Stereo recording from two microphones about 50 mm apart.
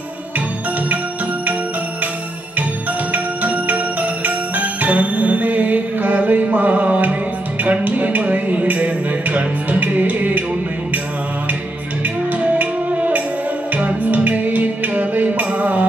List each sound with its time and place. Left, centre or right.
3.1 s music: right
12.5 s music: right